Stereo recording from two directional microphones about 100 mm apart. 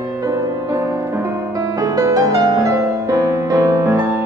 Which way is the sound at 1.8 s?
35° right (ahead or behind).